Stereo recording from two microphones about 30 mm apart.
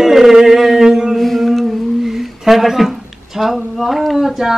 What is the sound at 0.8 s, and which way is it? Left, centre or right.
Music, right.